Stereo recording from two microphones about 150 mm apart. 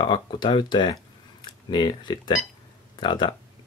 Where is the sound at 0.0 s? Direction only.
30° left (ahead or behind).